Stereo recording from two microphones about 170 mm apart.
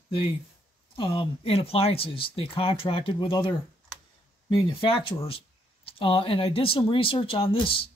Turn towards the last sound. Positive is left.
turn(degrees=30)  # may be behind; listen again after turning